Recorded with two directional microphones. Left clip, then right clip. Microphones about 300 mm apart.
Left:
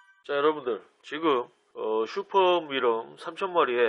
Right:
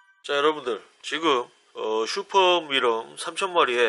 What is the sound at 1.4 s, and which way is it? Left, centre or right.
Speech, left.